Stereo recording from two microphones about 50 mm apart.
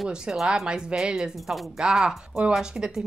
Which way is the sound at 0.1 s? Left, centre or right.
Centre.